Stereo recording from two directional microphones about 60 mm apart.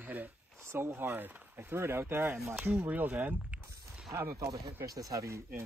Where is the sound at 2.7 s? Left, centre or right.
Right.